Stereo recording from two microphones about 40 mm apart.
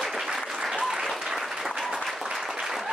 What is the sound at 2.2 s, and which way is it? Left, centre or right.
Applause, centre.